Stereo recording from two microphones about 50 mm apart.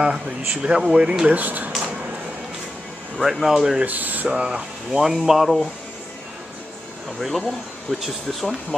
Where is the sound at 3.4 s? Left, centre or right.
Centre.